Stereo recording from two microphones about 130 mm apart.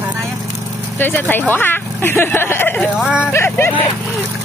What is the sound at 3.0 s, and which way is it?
Speech, 5° right (ahead or behind).